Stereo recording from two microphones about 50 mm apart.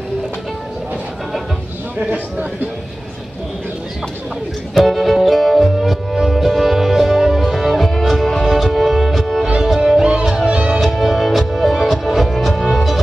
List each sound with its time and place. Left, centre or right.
2.0 s a man's voice: right
4.7 s music: centre
9.8 s music: centre
10.8 s music: centre